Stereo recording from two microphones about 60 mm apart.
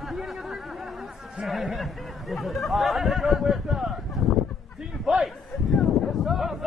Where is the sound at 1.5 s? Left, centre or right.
Centre.